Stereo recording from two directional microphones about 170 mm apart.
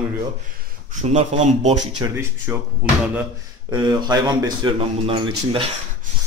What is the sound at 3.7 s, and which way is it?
Speech, 25° right (ahead or behind).